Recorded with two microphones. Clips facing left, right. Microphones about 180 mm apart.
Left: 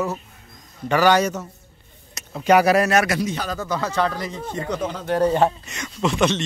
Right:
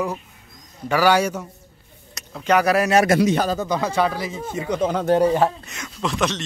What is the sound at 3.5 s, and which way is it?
Speech, 15° right (ahead or behind).